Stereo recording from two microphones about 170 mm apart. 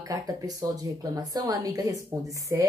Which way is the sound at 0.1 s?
20° right (ahead or behind).